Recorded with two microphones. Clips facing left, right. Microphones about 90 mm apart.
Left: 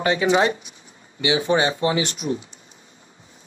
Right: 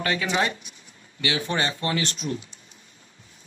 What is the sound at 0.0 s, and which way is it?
Speech, 20° left (ahead or behind).